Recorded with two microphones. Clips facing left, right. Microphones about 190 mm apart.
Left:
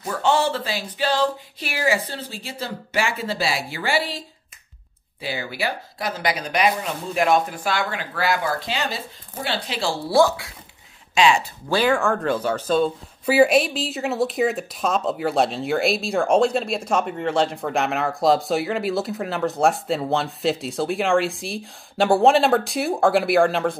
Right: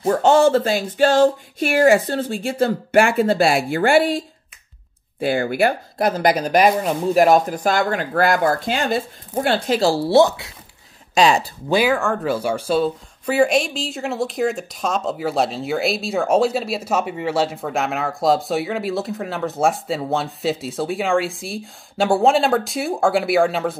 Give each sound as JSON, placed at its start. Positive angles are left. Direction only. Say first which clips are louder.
{"t": 0.1, "sound": "speech", "louder": "right 7 dB", "side_deg": -45}
{"t": 5.2, "sound": "speech", "louder": "right 9 dB", "side_deg": -50}
{"t": 10.0, "sound": "speech", "louder": "even", "side_deg": -20}
{"t": 11.1, "sound": "speech", "louder": "right 2 dB", "side_deg": -40}
{"t": 11.7, "sound": "speech", "louder": "right 2 dB", "side_deg": -5}
{"t": 13.2, "sound": "a woman's voice", "louder": "left 1 dB", "side_deg": 5}